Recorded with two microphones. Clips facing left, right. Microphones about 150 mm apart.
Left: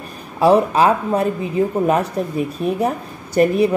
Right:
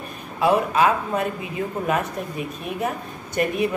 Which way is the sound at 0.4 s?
35° left (ahead or behind).